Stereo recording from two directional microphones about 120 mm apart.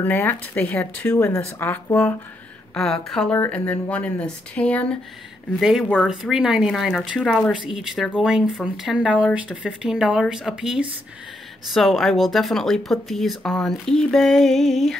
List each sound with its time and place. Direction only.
0.0 s speech: 15° left (ahead or behind)
1.1 s speech: 20° left (ahead or behind)
2.7 s speech: 5° left (ahead or behind)
3.3 s speech: 15° left (ahead or behind)
5.6 s speech: 5° right (ahead or behind)